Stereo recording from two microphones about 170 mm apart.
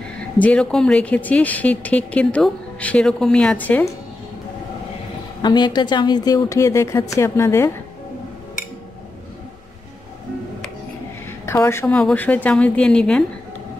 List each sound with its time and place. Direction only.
0.4 s speech: 5° left (ahead or behind)
5.4 s speech: 25° left (ahead or behind)
11.4 s speech: 15° left (ahead or behind)